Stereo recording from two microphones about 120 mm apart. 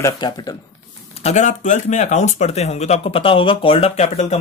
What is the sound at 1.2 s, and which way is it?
Speech, 70° left (ahead or behind).